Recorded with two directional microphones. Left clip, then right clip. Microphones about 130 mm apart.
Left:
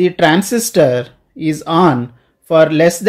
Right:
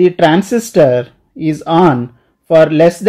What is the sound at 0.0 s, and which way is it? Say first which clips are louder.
Speech: right 2 dB; 30° right (ahead or behind).